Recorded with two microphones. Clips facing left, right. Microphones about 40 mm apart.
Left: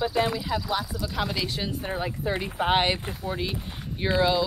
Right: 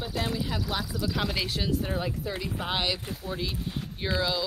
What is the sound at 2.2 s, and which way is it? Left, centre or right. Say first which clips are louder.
Speech: left 5 dB; left.